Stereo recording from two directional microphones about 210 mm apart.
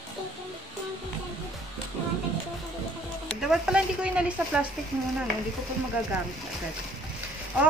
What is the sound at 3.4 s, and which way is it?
A woman's voice, 5° right (ahead or behind).